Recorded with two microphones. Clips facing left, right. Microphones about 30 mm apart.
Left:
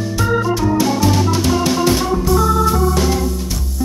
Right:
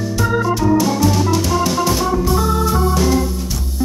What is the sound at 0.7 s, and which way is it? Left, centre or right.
Music, centre.